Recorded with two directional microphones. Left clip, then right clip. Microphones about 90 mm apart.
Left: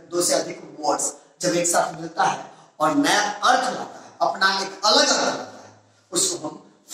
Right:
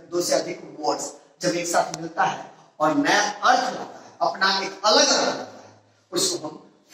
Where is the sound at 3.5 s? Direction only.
40° left (ahead or behind).